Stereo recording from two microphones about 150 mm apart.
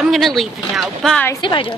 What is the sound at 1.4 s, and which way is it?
Speech, 30° left (ahead or behind).